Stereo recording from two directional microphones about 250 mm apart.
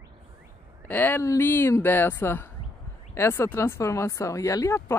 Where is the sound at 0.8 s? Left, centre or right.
Centre.